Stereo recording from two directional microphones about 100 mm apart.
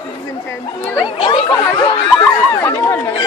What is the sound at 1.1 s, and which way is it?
Speech, 55° left (ahead or behind).